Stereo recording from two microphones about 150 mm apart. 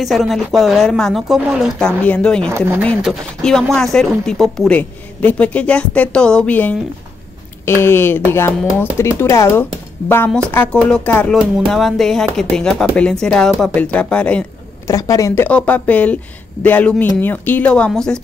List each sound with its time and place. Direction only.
0.0 s a woman's voice: centre (ahead or behind)
14.9 s speech: 20° left (ahead or behind)
15.4 s a woman's voice: 10° left (ahead or behind)